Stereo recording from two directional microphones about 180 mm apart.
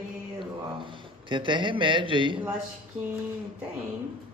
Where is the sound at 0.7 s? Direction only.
25° right (ahead or behind).